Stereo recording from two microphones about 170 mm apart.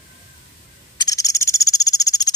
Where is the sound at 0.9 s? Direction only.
20° left (ahead or behind).